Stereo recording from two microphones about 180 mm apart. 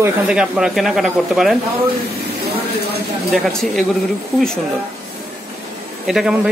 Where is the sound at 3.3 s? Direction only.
Centre (ahead or behind).